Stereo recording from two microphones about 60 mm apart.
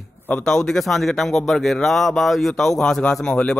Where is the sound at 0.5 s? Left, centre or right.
Centre.